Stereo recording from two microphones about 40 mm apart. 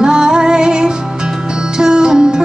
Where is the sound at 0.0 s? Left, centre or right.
Centre.